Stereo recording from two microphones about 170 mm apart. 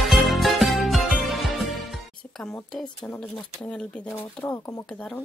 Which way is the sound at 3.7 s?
10° left (ahead or behind).